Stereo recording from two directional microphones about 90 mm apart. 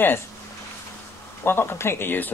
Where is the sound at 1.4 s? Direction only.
25° left (ahead or behind).